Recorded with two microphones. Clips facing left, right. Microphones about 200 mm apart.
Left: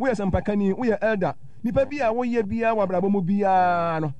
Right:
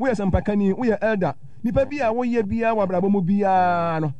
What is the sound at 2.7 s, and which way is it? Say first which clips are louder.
Speech: right 2 dB; 15° right (ahead or behind).